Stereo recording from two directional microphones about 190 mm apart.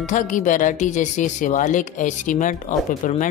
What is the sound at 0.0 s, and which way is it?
Speech, 40° left (ahead or behind).